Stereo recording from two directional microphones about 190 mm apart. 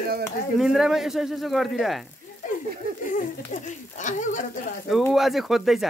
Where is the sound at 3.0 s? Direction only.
40° left (ahead or behind).